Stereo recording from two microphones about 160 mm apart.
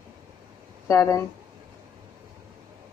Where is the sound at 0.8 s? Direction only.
20° left (ahead or behind).